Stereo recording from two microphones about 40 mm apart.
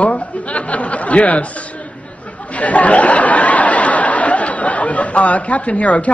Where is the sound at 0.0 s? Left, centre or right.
Left.